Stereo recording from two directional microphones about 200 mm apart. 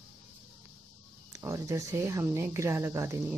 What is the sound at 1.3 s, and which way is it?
Speech, 15° right (ahead or behind).